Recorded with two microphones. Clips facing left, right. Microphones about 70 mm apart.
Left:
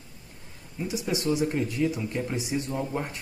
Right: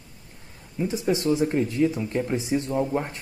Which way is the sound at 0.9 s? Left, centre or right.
Right.